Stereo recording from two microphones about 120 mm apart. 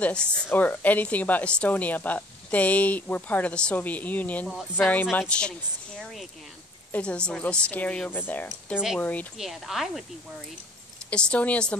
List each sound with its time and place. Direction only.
0.0 s speech: 10° left (ahead or behind)
6.9 s speech: 10° left (ahead or behind)
9.4 s a woman's voice: 5° right (ahead or behind)
11.1 s speech: 10° left (ahead or behind)